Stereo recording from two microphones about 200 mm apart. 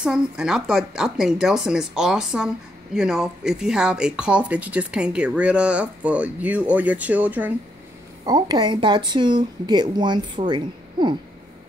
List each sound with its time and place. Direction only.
0.0 s speech: 5° right (ahead or behind)
8.3 s a woman's voice: 20° right (ahead or behind)